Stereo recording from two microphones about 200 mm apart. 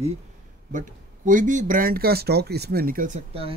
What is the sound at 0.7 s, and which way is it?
Speech, 40° right (ahead or behind).